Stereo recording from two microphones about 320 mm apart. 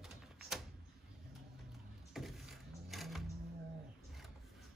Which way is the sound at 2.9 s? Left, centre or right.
Centre.